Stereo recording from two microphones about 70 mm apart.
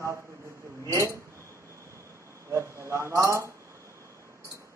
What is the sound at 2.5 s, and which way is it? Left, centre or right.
A man's voice, right.